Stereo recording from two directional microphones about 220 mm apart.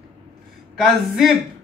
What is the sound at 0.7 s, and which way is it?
Speech, centre (ahead or behind).